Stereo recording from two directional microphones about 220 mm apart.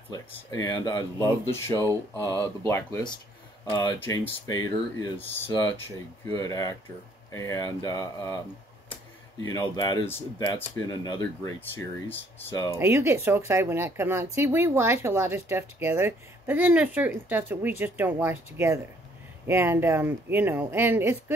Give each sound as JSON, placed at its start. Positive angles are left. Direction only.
{"t": 0.1, "sound": "speech", "side_deg": 15}
{"t": 2.2, "sound": "speech", "side_deg": -15}
{"t": 2.7, "sound": "speech", "side_deg": 15}
{"t": 9.5, "sound": "speech", "side_deg": 15}
{"t": 12.7, "sound": "speech", "side_deg": -10}